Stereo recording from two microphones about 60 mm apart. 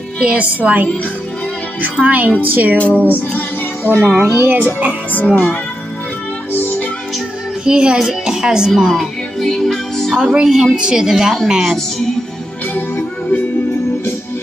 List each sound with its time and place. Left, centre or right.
0.2 s a woman's voice: right
2.0 s a woman's voice: right
2.8 s speech: left
3.2 s music: left
4.0 s speech: centre
4.4 s a child's voice: right
5.1 s speech: left
6.5 s music: left
7.6 s speech: centre
9.4 s music: centre
10.1 s speech: centre
12.7 s music: left